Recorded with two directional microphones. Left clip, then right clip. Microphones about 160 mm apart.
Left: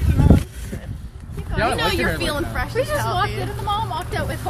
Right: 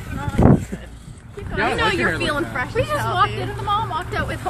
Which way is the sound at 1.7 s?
10° right (ahead or behind).